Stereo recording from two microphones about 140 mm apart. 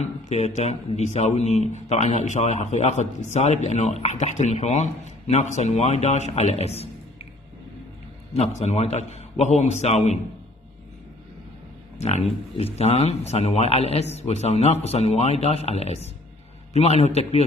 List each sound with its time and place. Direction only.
0.0 s speech: 50° left (ahead or behind)
8.3 s speech: 50° left (ahead or behind)
12.7 s speech: 50° left (ahead or behind)